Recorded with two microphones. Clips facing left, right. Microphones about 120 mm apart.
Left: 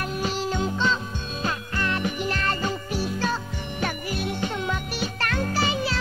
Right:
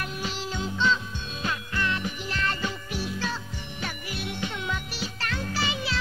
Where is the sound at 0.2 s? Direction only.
45° left (ahead or behind).